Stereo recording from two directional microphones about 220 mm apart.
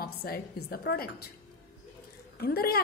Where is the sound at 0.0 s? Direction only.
45° left (ahead or behind).